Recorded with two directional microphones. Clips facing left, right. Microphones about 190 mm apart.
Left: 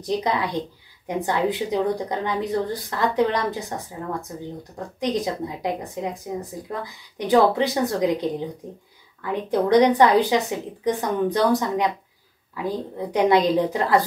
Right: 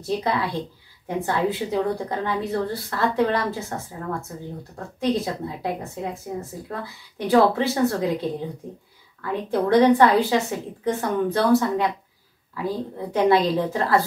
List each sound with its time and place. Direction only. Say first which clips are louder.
0.0 s a woman's voice: left 1 dB; 15° left (ahead or behind)